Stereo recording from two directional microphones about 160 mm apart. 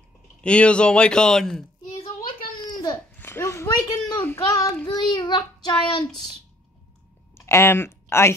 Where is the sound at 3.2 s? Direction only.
15° left (ahead or behind).